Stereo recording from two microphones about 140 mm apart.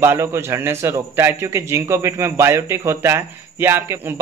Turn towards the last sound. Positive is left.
turn(degrees=-15)  # may be behind; listen again after turning